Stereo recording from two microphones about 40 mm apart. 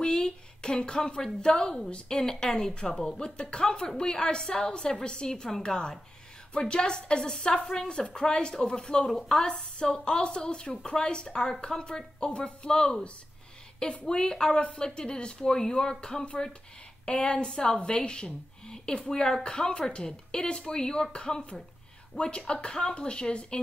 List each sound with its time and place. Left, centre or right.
0.0 s a woman's voice: left
9.5 s a woman's voice: left
9.8 s a woman's voice: centre
12.3 s a woman's voice: left
12.6 s speech: centre
14.0 s a woman's voice: centre
19.4 s a woman's voice: left